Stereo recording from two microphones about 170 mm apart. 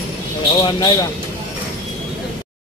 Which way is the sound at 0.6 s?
25° left (ahead or behind).